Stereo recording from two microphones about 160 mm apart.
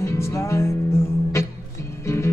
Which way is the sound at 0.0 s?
20° left (ahead or behind).